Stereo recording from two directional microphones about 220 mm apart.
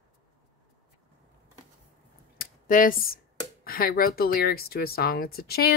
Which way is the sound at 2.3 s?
40° left (ahead or behind).